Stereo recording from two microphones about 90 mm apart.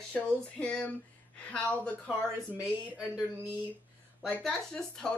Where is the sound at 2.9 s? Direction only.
5° right (ahead or behind).